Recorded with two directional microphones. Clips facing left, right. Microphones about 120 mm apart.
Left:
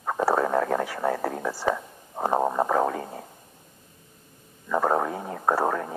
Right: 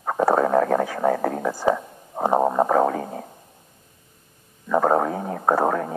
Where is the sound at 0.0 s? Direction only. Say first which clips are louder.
Right 4 dB; 15° right (ahead or behind).